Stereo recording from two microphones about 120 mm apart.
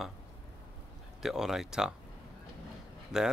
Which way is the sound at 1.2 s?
5° right (ahead or behind).